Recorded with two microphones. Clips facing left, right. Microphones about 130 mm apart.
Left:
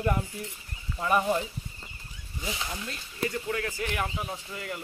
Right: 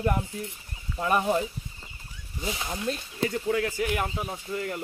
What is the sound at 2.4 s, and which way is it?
Speech, 25° right (ahead or behind).